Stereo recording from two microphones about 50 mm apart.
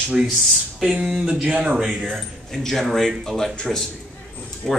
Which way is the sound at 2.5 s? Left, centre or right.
Centre.